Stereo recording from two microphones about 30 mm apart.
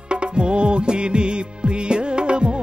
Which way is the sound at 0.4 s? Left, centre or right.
Right.